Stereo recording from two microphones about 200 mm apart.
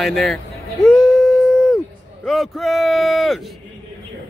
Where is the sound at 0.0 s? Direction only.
Centre (ahead or behind).